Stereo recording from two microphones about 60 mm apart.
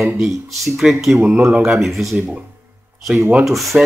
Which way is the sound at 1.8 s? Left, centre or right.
Centre.